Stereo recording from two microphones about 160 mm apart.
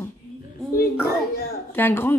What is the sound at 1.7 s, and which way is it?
Speech, 15° left (ahead or behind).